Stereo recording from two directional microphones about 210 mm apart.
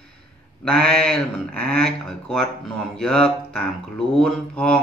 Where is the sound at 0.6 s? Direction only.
5° left (ahead or behind).